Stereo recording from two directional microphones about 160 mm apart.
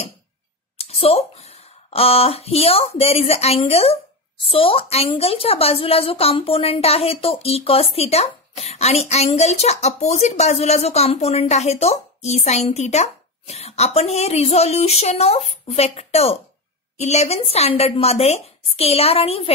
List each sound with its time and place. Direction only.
0.7 s a woman's voice: 40° left (ahead or behind)